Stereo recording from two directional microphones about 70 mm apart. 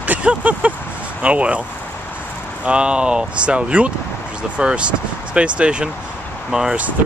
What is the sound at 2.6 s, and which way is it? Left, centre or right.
Speech, centre.